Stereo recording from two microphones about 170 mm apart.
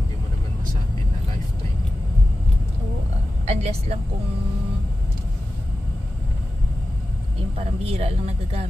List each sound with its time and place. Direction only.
3.4 s a woman's voice: 40° right (ahead or behind)
7.5 s speech: 35° right (ahead or behind)